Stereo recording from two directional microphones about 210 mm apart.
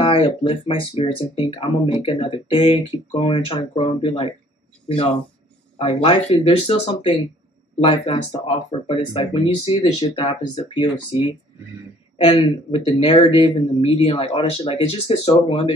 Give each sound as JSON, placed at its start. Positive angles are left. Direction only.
{"t": 0.0, "sound": "speech", "side_deg": 25}
{"t": 5.8, "sound": "speech", "side_deg": 25}